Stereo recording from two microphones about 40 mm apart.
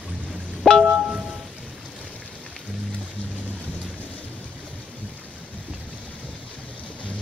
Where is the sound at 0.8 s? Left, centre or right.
Right.